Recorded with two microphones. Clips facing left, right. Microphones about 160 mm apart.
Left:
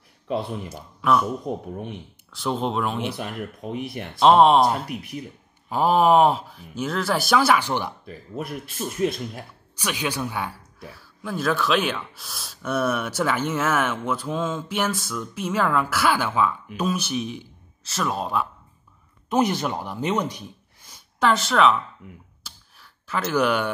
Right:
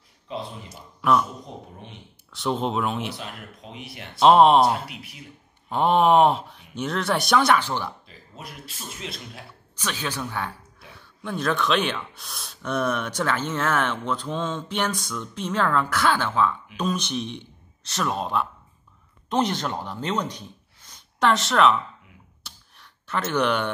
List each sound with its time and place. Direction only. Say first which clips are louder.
0.3 s speech: left 7 dB; 65° left (ahead or behind)
0.7 s speech: right 2 dB; centre (ahead or behind)
1.4 s speech: left 10 dB; 60° left (ahead or behind)
2.3 s speech: even; centre (ahead or behind)
3.2 s speech: left 7 dB; 55° left (ahead or behind)
4.1 s speech: even; centre (ahead or behind)
8.0 s speech: left 10 dB; 55° left (ahead or behind)
9.8 s speech: left 3 dB; 10° left (ahead or behind)
22.4 s a sound: even; centre (ahead or behind)